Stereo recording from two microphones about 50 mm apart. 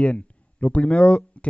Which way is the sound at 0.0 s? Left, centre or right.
Left.